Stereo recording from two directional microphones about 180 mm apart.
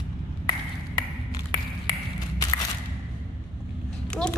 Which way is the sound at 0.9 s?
25° left (ahead or behind).